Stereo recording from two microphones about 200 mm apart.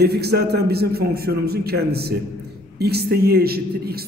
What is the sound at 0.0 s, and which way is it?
A man's voice, 55° right (ahead or behind).